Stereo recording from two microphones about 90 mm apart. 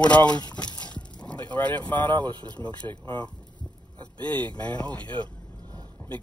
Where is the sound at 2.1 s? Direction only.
55° right (ahead or behind).